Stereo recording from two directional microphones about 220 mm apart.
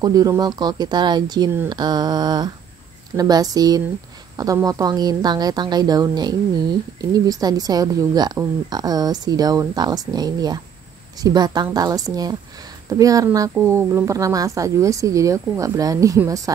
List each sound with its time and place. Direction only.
0.0 s a woman's voice: 15° right (ahead or behind)